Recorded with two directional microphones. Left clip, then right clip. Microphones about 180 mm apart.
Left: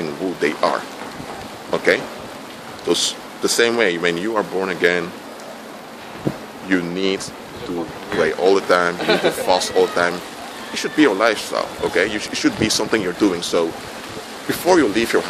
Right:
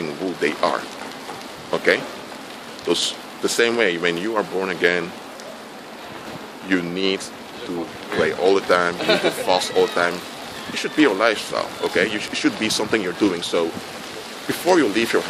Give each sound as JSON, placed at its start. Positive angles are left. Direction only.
{"t": 0.0, "sound": "a sound", "side_deg": 0}
{"t": 1.7, "sound": "speech", "side_deg": 0}
{"t": 6.7, "sound": "speech", "side_deg": 0}
{"t": 8.2, "sound": "speech", "side_deg": 0}
{"t": 9.0, "sound": "speech", "side_deg": -40}
{"t": 9.5, "sound": "speech", "side_deg": 5}
{"t": 14.7, "sound": "speech", "side_deg": 5}